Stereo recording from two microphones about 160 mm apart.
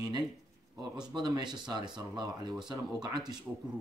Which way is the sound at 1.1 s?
25° right (ahead or behind).